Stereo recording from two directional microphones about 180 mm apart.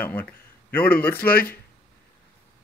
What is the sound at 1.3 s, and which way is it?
Speech, 55° left (ahead or behind).